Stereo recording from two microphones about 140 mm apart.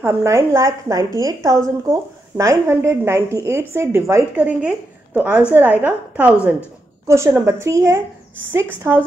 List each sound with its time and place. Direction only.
0.0 s a woman's voice: 20° right (ahead or behind)